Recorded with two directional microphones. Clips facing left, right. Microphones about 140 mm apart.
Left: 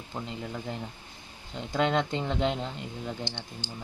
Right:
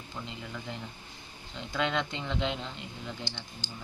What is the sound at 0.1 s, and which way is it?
Speech, 35° left (ahead or behind).